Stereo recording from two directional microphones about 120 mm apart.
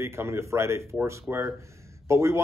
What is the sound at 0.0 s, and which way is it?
Speech, 20° right (ahead or behind).